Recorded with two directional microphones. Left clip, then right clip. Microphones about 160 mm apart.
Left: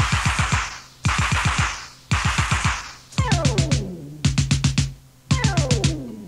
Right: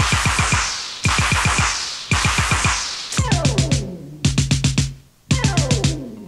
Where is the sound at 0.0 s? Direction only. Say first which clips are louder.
Right 4 dB; 45° left (ahead or behind).